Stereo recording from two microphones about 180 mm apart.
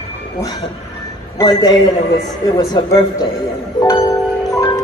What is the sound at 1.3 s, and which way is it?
A man's voice, 20° left (ahead or behind).